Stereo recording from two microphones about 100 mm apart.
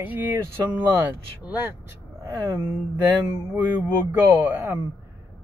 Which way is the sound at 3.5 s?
20° right (ahead or behind).